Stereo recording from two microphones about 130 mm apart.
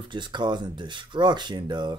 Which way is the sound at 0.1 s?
35° right (ahead or behind).